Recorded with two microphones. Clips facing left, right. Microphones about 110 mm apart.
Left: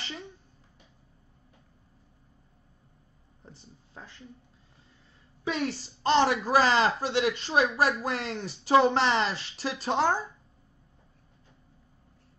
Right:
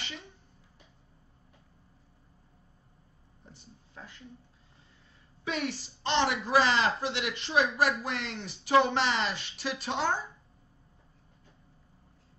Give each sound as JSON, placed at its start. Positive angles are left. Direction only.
{"t": 5.4, "sound": "a woman's voice", "side_deg": 35}